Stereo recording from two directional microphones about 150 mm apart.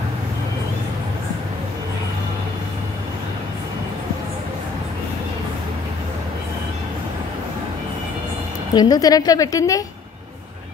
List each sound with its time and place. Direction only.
8.7 s a woman's voice: 25° left (ahead or behind)